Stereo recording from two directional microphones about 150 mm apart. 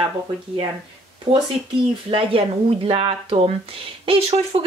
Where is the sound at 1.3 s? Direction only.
35° right (ahead or behind).